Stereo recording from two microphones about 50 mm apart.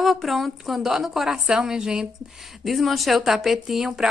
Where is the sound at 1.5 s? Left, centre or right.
Centre.